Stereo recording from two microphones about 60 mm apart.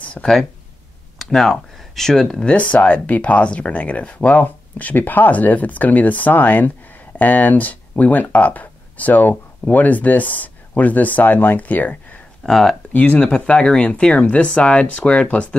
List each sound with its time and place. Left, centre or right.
0.0 s a sound: centre
1.1 s speech: centre
2.4 s speech: left
12.4 s speech: centre
12.9 s speech: left